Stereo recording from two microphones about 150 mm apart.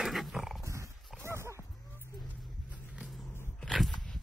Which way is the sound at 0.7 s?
20° right (ahead or behind).